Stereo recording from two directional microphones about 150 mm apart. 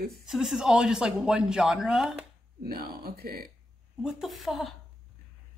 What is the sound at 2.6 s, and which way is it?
Speech, 85° right.